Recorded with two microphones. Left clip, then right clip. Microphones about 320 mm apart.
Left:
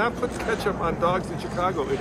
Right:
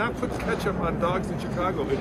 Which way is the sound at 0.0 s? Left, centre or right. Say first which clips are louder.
Left 3 dB; centre.